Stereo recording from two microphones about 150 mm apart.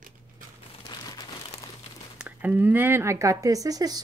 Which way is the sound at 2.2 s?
10° right (ahead or behind).